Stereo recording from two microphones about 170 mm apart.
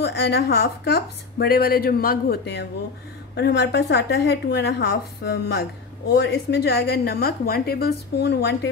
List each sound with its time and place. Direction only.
0.0 s a woman's voice: 75° left (ahead or behind)
6.1 s a woman's voice: 80° left